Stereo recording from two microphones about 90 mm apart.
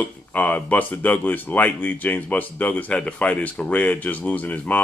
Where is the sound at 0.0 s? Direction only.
15° left (ahead or behind).